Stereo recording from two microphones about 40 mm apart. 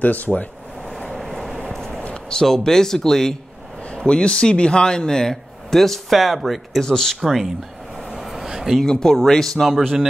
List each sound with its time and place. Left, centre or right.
0.0 s speech: left
1.1 s vehicle: centre
2.0 s a sound: left
2.4 s a man's voice: centre
3.9 s a man's voice: left; by 6.8 s centre
6.8 s a man's voice: centre
8.1 s a sound: centre
8.8 s a man's voice: centre